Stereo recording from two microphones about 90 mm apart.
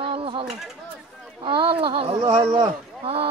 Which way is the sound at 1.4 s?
75° right (ahead or behind).